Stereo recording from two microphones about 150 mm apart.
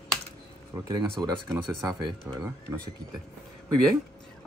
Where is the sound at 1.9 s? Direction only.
25° right (ahead or behind).